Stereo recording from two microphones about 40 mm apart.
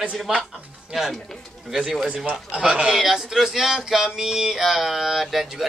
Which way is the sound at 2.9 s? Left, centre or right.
Centre.